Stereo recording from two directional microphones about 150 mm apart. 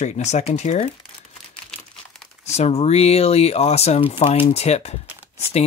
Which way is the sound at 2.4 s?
45° left (ahead or behind).